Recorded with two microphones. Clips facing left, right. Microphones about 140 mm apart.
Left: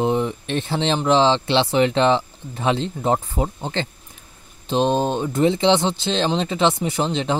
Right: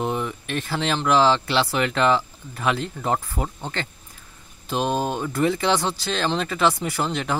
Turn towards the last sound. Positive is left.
turn(degrees=20)  # may be behind; listen again after turning